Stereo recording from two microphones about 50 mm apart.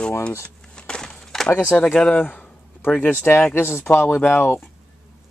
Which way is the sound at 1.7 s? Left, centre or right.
Left.